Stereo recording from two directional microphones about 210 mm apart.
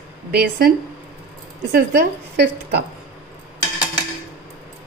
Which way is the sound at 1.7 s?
50° right (ahead or behind).